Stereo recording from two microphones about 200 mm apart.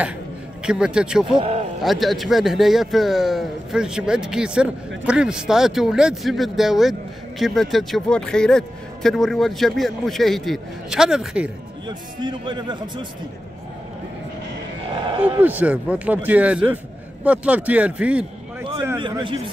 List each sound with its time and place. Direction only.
0.7 s a man's voice: 5° right (ahead or behind)
1.4 s a sound: 30° right (ahead or behind)
1.8 s a man's voice: centre (ahead or behind)
12.2 s a man's voice: 20° right (ahead or behind)
15.1 s a man's voice: 10° right (ahead or behind)
18.8 s a man's voice: 20° right (ahead or behind)